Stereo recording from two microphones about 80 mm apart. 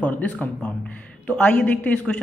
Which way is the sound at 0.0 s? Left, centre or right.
Centre.